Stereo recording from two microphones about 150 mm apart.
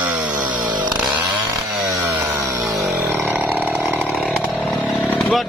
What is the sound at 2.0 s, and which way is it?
Chainsaw, 15° right (ahead or behind).